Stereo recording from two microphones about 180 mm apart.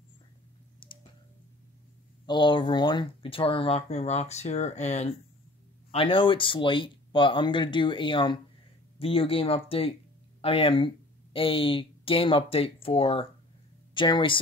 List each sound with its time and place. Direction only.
0.8 s tick: 30° left (ahead or behind)
2.2 s speech: 25° left (ahead or behind)